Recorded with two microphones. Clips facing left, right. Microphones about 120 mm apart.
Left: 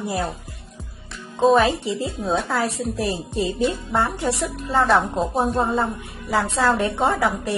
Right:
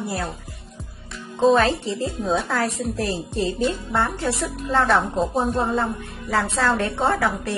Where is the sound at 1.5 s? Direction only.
15° left (ahead or behind).